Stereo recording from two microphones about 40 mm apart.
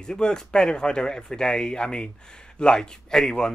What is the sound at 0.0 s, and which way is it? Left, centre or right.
Speech, centre.